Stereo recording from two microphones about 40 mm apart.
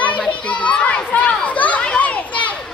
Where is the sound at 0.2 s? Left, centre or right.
Left.